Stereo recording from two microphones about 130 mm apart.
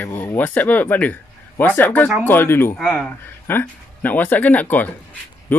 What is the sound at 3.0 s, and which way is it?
Speech, 15° left (ahead or behind).